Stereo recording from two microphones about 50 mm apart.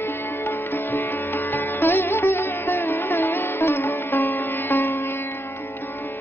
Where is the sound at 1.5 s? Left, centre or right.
Left.